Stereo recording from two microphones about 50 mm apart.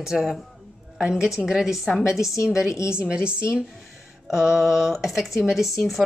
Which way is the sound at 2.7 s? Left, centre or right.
Left.